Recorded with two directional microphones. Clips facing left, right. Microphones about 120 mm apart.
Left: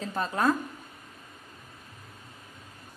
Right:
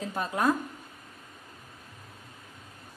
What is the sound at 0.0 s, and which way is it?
Speech, 10° right (ahead or behind).